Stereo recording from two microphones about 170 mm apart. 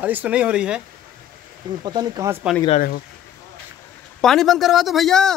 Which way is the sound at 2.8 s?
60° left (ahead or behind).